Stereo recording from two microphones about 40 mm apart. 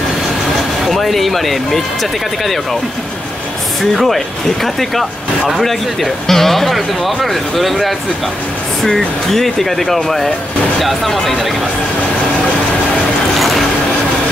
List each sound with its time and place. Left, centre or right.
0.8 s speech: centre
3.9 s speech: centre
6.2 s speech: centre
13.4 s a sound: centre